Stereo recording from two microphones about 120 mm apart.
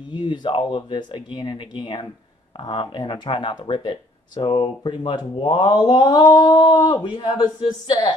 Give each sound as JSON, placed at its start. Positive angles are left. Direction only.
{"t": 0.1, "sound": "speech", "side_deg": 40}